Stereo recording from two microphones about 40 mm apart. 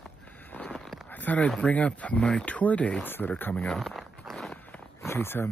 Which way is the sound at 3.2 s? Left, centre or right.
Left.